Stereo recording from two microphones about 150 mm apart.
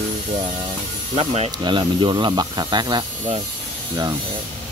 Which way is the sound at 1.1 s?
45° right (ahead or behind).